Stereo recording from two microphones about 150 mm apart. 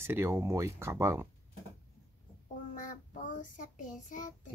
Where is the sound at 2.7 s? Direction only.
60° left (ahead or behind).